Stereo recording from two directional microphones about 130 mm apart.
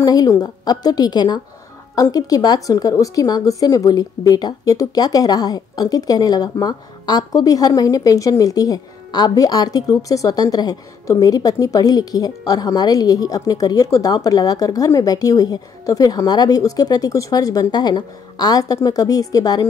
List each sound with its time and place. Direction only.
0.0 s a woman's voice: 30° left (ahead or behind)